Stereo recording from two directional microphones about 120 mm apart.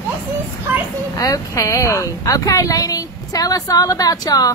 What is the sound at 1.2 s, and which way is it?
Speech, 25° left (ahead or behind).